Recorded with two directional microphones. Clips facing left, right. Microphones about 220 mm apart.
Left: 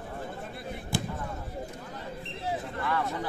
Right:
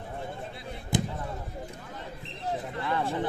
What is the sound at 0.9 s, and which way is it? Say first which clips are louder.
Basketball bounce: right 4 dB; 20° right (ahead or behind).